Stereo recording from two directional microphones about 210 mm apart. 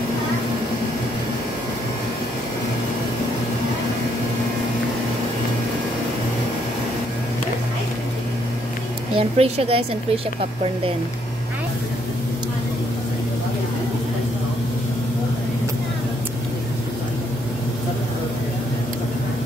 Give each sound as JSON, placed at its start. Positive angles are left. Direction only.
{"t": 9.1, "sound": "a woman's voice", "side_deg": -25}